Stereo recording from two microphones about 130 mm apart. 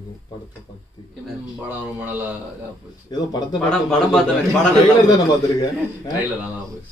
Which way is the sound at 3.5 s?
5° left (ahead or behind).